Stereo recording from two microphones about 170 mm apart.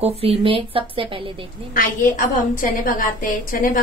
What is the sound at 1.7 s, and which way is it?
A woman's voice, 55° left (ahead or behind).